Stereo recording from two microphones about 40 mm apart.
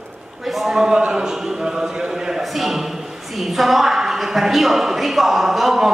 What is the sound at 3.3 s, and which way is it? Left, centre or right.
A woman's voice, centre.